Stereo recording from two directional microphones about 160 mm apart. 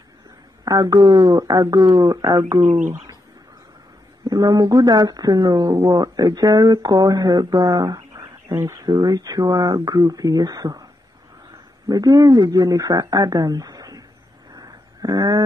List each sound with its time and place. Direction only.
0.7 s speech: 25° right (ahead or behind)
4.3 s speech: 25° right (ahead or behind)
11.9 s speech: 20° right (ahead or behind)
14.5 s a sound: 25° right (ahead or behind)